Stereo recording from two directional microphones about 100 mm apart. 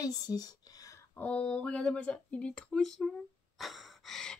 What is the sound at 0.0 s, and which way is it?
Whispering, 40° left (ahead or behind).